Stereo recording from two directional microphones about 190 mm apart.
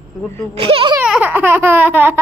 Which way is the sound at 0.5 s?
30° right (ahead or behind).